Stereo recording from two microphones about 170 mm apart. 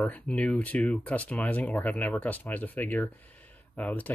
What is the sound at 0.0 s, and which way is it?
Speech, 10° left (ahead or behind).